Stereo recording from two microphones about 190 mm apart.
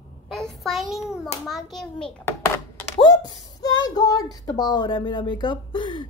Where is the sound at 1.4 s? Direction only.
Centre (ahead or behind); by 3.3 s 20° left (ahead or behind).